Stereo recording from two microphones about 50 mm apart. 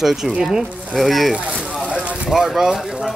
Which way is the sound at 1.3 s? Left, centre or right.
Right.